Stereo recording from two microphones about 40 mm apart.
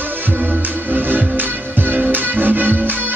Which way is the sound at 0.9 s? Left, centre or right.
Right.